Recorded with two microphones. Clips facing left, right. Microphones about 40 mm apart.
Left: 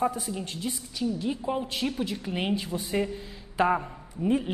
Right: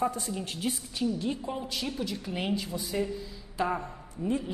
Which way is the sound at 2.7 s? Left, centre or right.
Left.